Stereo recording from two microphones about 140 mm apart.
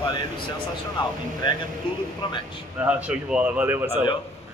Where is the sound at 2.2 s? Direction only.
30° left (ahead or behind).